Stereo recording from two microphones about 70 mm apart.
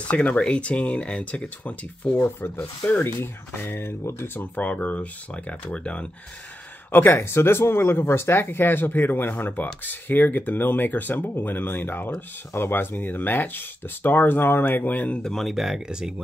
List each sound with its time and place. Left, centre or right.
0.1 s speech: centre; by 4.3 s left
4.4 s speech: left
6.9 s speech: left
15.2 s speech: centre